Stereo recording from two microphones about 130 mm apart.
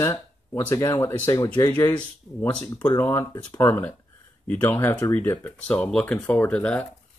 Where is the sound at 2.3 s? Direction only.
5° left (ahead or behind).